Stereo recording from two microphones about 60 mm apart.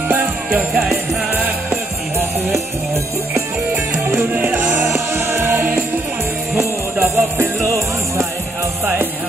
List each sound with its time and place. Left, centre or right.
0.1 s music: right
4.1 s music: right
4.8 s music: right